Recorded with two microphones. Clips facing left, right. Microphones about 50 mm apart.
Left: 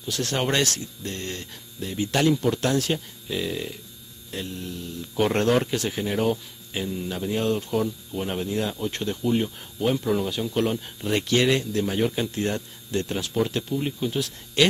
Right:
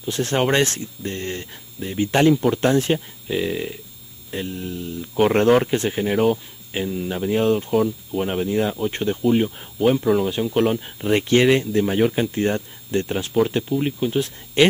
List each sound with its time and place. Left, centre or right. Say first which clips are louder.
0.0 s speech: right 5 dB; right